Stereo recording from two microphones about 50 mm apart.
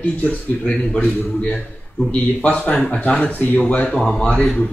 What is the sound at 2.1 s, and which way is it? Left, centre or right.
Speech, left.